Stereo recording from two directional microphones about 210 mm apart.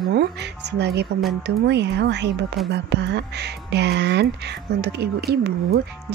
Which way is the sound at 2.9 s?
55° right (ahead or behind).